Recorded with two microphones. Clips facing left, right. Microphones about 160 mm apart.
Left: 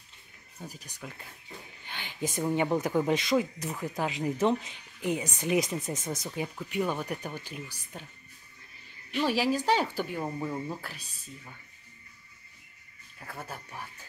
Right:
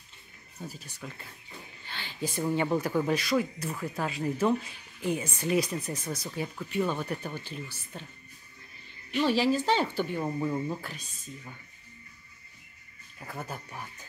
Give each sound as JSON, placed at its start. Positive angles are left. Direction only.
{"t": 0.6, "sound": "speech", "side_deg": 15}
{"t": 9.1, "sound": "speech", "side_deg": 10}
{"t": 13.4, "sound": "speech", "side_deg": 5}